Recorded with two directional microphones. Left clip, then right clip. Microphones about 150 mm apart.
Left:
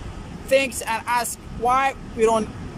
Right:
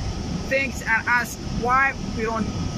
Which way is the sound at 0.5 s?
30° left (ahead or behind).